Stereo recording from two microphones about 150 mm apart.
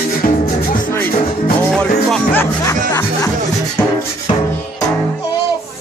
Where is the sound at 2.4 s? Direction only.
20° left (ahead or behind).